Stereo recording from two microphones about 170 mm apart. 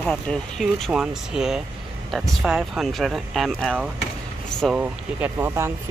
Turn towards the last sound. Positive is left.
turn(degrees=-10)  # may be behind; listen again after turning